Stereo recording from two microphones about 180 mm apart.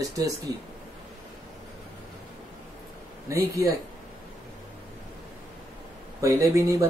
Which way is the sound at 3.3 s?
15° right (ahead or behind).